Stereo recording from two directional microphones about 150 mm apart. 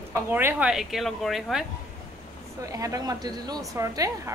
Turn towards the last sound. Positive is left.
turn(degrees=-20)  # may be behind; listen again after turning